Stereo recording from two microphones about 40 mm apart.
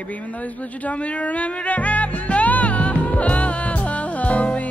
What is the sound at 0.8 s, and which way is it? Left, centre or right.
Music, left.